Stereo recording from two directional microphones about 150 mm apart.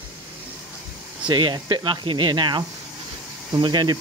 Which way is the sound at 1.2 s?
30° right (ahead or behind).